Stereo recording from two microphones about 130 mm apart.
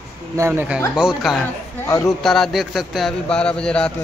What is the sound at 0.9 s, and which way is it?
A man's voice, centre (ahead or behind).